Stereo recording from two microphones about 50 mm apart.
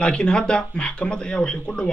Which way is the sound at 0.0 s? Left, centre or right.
Centre.